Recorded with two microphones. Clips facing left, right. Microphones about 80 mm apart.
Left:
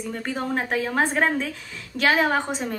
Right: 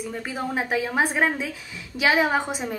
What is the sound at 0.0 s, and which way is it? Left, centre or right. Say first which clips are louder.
A woman's voice: left 1 dB; centre.